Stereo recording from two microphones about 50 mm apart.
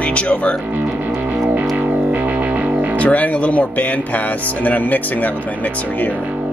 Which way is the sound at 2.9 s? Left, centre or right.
Left.